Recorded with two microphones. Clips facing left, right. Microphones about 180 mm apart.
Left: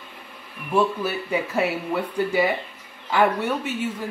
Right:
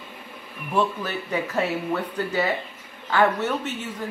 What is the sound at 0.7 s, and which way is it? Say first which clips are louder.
Speech: left 3 dB; 10° left (ahead or behind).